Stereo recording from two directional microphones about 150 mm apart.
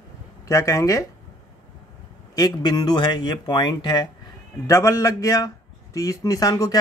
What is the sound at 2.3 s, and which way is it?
Speech, 25° left (ahead or behind).